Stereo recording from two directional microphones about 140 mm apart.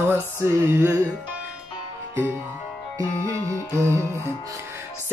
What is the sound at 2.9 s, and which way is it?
Music, 20° right (ahead or behind).